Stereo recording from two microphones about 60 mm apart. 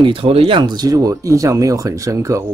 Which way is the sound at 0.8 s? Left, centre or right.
Right.